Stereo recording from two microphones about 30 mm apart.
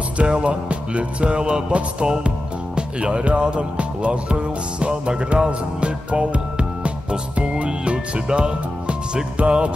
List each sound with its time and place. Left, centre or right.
0.2 s music: right
2.0 s speech: right
7.3 s music: right
9.4 s music: right